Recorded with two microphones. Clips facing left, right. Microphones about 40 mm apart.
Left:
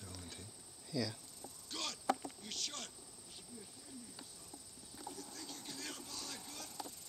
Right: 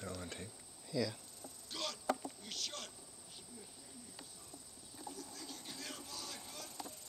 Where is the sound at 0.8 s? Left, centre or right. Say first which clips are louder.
Right 2 dB; centre.